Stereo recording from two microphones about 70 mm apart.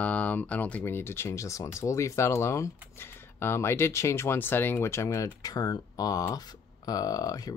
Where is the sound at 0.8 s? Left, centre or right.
Left.